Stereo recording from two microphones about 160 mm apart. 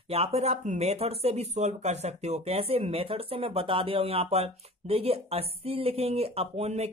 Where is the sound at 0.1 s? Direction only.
40° right (ahead or behind).